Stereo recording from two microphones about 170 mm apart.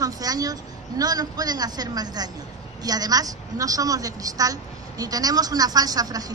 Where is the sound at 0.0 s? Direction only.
20° right (ahead or behind).